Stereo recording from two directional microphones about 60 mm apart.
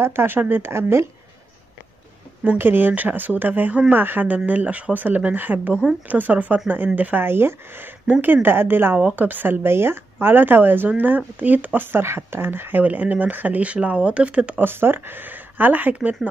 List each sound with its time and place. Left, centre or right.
0.0 s speech: right
2.4 s speech: right
12.8 s speech: right
14.6 s speech: right